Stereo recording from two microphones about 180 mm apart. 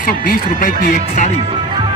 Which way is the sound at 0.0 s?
50° left (ahead or behind).